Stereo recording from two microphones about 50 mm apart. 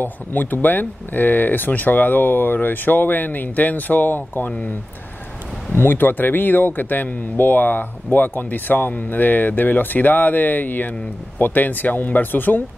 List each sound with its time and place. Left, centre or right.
0.0 s speech: left
4.5 s speech: left
5.8 s speech: left